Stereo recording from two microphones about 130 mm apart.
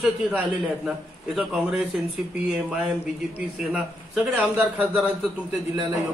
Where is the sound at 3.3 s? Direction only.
5° right (ahead or behind).